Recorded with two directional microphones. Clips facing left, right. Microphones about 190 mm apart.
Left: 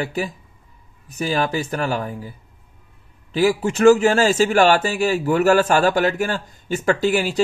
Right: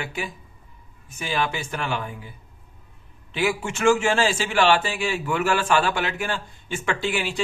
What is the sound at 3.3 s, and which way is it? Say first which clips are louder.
A man's voice: left 7 dB; 35° left (ahead or behind).